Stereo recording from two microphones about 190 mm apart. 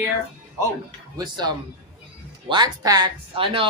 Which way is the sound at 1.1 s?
20° right (ahead or behind).